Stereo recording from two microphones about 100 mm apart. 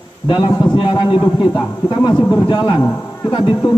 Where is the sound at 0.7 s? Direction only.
50° left (ahead or behind).